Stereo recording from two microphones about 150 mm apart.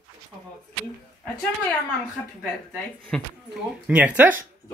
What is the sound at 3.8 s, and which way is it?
Speech, 10° right (ahead or behind).